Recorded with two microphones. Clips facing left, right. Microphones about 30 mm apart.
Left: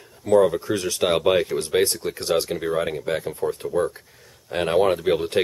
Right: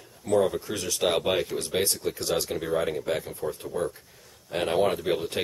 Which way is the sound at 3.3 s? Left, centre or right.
Left.